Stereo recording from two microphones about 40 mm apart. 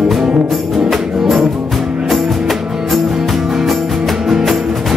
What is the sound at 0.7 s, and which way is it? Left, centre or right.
Music, centre.